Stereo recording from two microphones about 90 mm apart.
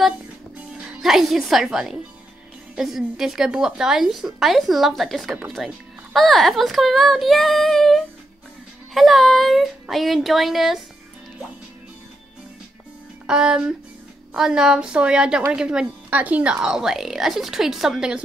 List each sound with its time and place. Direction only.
0.7 s speech: 5° right (ahead or behind)
13.3 s a woman's voice: 10° right (ahead or behind)